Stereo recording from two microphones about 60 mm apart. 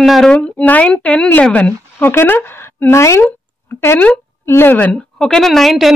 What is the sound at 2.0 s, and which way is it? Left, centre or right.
Speech, left.